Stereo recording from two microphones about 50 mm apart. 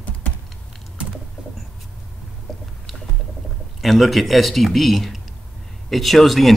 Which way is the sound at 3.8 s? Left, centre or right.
Centre.